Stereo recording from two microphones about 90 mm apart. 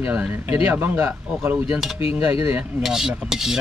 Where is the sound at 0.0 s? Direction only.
15° right (ahead or behind).